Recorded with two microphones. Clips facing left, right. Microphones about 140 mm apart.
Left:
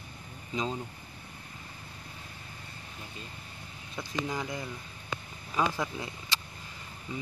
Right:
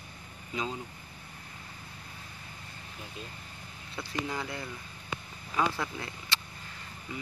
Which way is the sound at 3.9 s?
15° left (ahead or behind).